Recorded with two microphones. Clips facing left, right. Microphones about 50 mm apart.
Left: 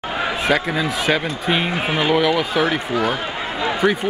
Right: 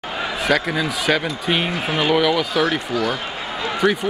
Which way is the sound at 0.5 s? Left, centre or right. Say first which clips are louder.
Right 1 dB; centre.